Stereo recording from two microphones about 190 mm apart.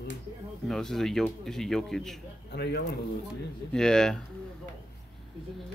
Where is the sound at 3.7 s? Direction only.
5° left (ahead or behind).